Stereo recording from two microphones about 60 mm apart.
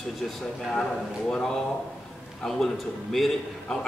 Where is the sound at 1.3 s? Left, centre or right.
Centre.